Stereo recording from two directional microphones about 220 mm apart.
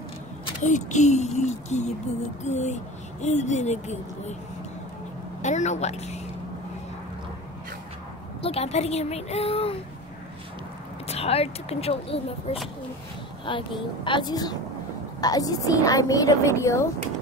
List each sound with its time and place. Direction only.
0.7 s speech: 35° left (ahead or behind)
5.4 s speech: 30° left (ahead or behind)
8.4 s speech: 25° left (ahead or behind)
11.1 s a woman's voice: 25° left (ahead or behind)